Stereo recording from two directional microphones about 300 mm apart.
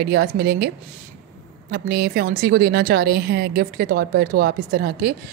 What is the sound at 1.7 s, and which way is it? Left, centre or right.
A woman's voice, right.